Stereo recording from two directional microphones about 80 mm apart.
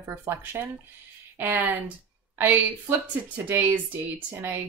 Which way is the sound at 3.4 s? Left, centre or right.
Right.